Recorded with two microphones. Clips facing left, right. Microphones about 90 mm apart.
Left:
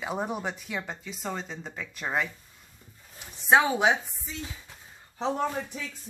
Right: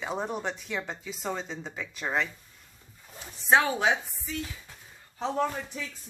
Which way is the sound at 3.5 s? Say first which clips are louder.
Left 2 dB; 15° left (ahead or behind).